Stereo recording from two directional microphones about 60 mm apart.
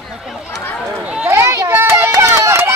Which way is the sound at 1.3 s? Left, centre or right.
Right.